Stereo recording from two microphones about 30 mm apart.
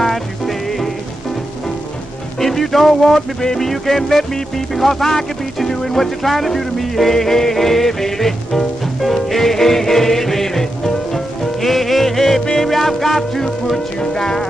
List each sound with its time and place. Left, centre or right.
0.0 s music: centre
2.4 s speech: centre
3.4 s music: centre